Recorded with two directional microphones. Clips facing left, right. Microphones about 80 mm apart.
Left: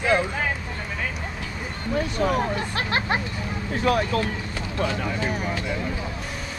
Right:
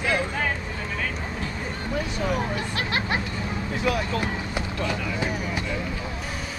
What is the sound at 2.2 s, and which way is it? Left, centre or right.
Speech, left.